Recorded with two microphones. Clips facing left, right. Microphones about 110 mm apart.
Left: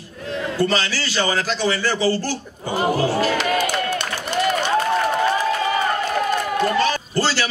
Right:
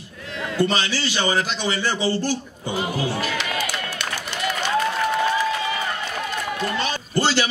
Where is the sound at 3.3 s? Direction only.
45° left (ahead or behind).